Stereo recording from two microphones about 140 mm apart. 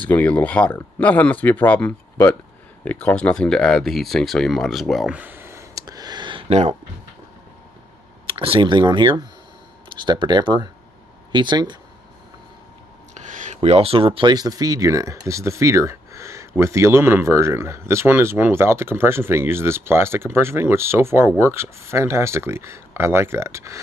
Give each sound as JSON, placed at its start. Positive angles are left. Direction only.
{"t": 0.0, "sound": "speech", "side_deg": 10}
{"t": 8.3, "sound": "speech", "side_deg": -40}
{"t": 13.1, "sound": "speech", "side_deg": -60}